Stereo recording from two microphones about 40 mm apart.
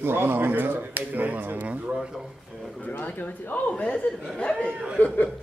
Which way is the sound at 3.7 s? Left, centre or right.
Left.